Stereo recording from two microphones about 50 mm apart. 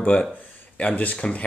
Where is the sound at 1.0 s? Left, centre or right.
Left.